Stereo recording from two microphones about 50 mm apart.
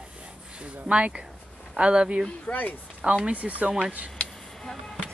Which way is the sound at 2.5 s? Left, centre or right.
Left.